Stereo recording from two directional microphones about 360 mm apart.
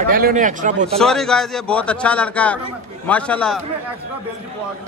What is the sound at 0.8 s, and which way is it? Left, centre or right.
A man's voice, centre.